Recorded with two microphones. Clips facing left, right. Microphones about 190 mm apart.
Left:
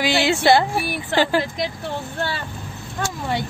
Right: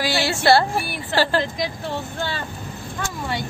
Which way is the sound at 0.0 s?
20° left (ahead or behind).